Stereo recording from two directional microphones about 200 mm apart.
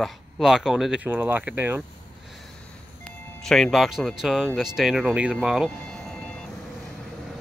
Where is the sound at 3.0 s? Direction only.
Centre (ahead or behind).